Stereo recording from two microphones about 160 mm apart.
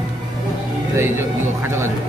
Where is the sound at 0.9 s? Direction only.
15° right (ahead or behind).